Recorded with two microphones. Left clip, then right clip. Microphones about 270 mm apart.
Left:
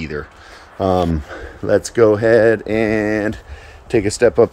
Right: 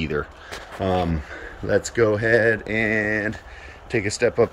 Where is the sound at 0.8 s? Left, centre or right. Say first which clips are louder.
Left 7 dB; left.